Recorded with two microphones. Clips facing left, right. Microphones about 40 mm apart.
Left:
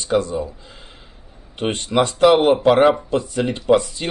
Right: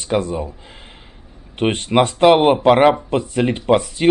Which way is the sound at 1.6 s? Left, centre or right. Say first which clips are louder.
Right 3 dB; right.